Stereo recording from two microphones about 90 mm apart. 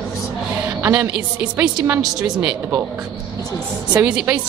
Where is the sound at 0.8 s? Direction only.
25° right (ahead or behind); by 2.5 s 10° right (ahead or behind).